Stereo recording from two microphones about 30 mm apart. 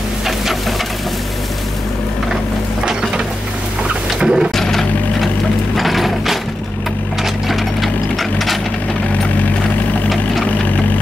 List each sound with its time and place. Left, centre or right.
4.2 s music: right
4.6 s a sound: centre
5.8 s ratchet: centre
7.4 s ratchet: centre